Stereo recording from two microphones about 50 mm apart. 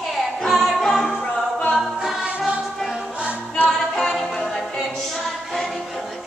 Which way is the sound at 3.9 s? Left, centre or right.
Centre.